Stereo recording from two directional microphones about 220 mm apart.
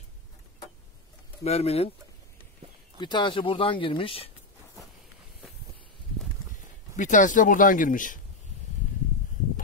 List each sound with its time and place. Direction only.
1.4 s speech: 30° left (ahead or behind)
3.0 s speech: 20° left (ahead or behind)
7.0 s speech: 35° left (ahead or behind)